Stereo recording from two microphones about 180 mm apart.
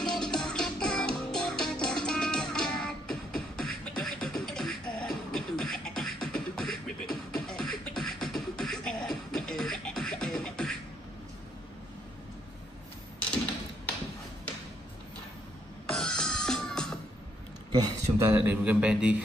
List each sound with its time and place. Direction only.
0.0 s music: 5° left (ahead or behind)
15.9 s music: 5° left (ahead or behind)
17.6 s a sound: 40° right (ahead or behind)
18.2 s a man's voice: 10° right (ahead or behind)